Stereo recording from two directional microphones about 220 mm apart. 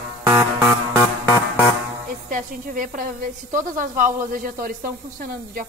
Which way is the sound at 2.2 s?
40° right (ahead or behind).